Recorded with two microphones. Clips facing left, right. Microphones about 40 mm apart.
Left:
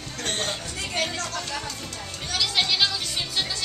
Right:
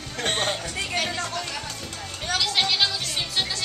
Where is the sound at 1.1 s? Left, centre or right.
Centre.